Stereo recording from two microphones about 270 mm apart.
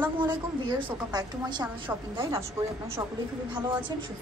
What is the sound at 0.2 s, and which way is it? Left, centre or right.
A woman's voice, centre.